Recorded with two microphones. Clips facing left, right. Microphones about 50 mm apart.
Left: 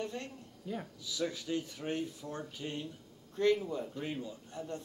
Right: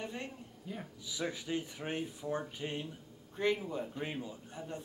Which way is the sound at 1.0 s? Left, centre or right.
Centre.